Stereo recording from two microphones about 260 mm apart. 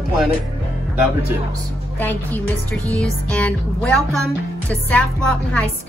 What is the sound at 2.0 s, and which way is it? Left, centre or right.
A woman's voice, centre.